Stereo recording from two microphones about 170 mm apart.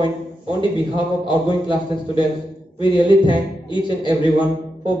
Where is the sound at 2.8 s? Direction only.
30° left (ahead or behind).